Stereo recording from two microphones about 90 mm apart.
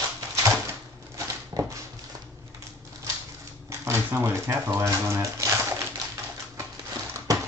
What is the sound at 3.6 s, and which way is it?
Typewriter, 30° right (ahead or behind).